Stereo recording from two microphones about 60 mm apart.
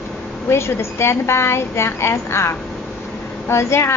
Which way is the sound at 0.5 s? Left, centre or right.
Left.